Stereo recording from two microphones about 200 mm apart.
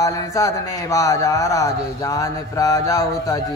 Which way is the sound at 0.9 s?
15° left (ahead or behind).